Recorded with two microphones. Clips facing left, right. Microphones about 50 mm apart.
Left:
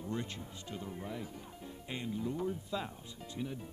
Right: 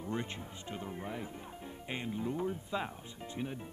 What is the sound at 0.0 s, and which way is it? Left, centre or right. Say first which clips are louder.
Speech: right 1 dB; right.